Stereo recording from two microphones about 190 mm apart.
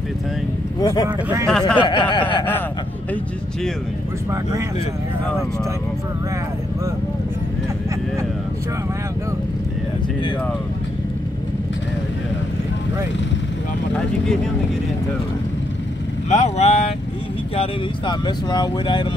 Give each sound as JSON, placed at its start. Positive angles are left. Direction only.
{"t": 0.7, "sound": "speech", "side_deg": 20}
{"t": 1.0, "sound": "speech", "side_deg": -15}
{"t": 1.8, "sound": "speech", "side_deg": 25}
{"t": 16.3, "sound": "speech", "side_deg": 35}
{"t": 17.6, "sound": "speech", "side_deg": 25}